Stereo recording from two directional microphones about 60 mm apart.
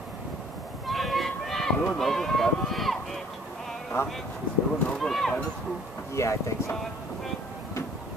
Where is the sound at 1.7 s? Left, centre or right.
Centre.